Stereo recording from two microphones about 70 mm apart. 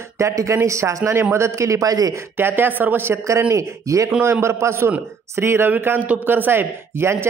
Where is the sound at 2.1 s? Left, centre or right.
Right.